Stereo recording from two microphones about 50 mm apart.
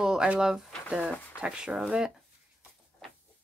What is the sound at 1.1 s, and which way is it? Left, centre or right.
Speech, left.